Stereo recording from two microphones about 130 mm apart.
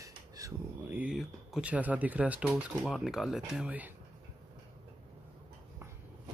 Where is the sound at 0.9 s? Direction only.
10° right (ahead or behind).